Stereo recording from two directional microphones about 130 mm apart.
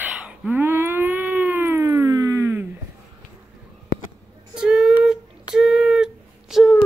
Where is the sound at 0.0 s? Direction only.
10° right (ahead or behind).